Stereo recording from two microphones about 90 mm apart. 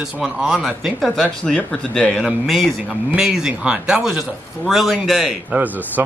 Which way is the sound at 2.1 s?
5° right (ahead or behind).